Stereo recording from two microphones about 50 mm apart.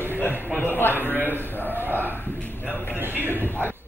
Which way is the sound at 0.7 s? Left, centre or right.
Left.